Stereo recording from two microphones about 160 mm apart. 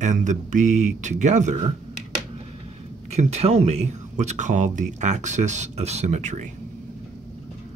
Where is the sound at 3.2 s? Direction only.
45° right (ahead or behind).